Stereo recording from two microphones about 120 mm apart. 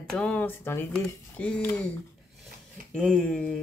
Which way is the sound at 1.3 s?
5° left (ahead or behind).